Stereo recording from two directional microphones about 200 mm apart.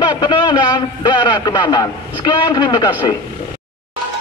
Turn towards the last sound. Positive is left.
turn(degrees=20)  # may be behind; listen again after turning